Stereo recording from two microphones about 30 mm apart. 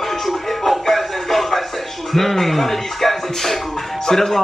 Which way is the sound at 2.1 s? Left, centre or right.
Centre.